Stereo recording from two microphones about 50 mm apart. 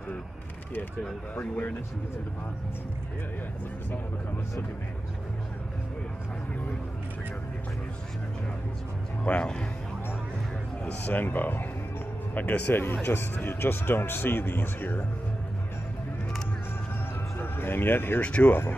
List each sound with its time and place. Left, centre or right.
1.3 s speech: left
9.2 s speech: left
10.8 s speech: left
11.1 s speech: left
13.0 s speech: left
17.4 s speech: left
18.2 s speech: left